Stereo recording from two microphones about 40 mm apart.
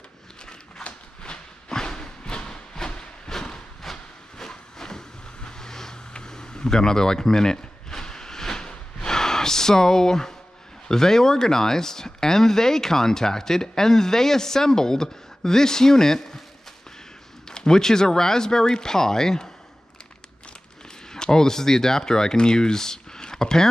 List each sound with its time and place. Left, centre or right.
0.8 s a sound: left
3.8 s train: centre
10.9 s speech: centre
17.5 s speech: centre
21.1 s speech: centre